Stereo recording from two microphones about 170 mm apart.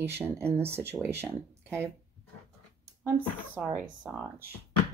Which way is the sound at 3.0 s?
10° right (ahead or behind).